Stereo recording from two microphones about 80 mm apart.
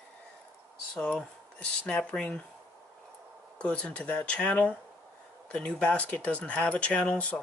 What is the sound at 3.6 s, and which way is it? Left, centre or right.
Speech, centre.